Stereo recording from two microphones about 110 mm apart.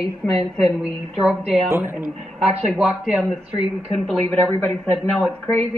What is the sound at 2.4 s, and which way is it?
Speech, 5° right (ahead or behind).